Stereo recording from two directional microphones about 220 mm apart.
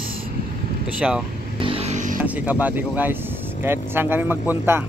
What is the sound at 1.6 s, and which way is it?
Vehicle, 25° right (ahead or behind).